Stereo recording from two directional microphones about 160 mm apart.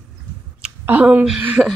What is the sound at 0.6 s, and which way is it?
A woman's voice, 10° right (ahead or behind).